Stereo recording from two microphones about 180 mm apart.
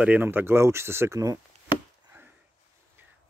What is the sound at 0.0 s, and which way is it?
Speech, 10° right (ahead or behind).